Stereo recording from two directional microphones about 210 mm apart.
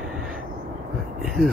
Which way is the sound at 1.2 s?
Centre (ahead or behind).